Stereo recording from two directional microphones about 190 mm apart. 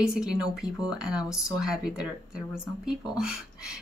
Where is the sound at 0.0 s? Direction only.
5° right (ahead or behind).